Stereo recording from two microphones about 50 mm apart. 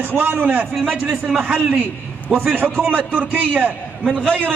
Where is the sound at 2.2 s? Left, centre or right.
Right.